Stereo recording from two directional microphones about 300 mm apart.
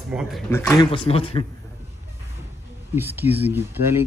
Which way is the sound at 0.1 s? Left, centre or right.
Centre.